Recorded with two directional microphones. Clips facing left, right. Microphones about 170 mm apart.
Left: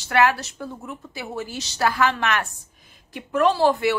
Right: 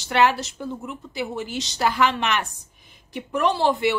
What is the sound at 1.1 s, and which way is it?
A woman's voice, 20° right (ahead or behind).